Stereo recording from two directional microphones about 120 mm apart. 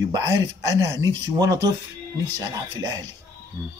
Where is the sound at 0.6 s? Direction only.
25° right (ahead or behind).